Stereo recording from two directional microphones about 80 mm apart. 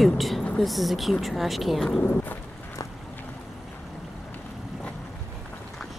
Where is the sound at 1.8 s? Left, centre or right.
Centre.